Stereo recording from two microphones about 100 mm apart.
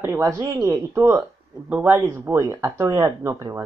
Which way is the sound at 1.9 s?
30° right (ahead or behind).